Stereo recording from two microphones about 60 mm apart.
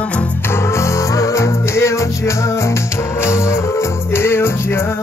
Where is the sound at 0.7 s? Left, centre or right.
Left.